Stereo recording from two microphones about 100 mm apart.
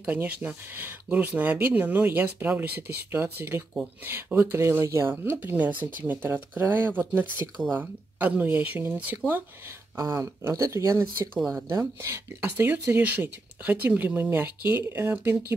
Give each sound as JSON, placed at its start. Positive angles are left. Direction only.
{"t": 0.0, "sound": "speech", "side_deg": -15}
{"t": 9.9, "sound": "speech", "side_deg": -30}